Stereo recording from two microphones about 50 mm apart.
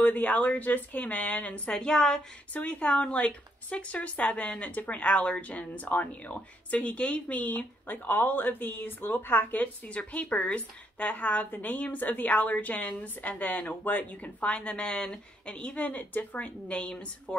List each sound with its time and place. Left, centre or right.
0.0 s a woman's voice: left; by 2.2 s centre
2.5 s a woman's voice: left